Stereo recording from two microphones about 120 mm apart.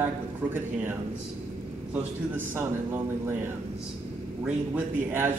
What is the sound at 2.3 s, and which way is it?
A man's voice, 20° right (ahead or behind).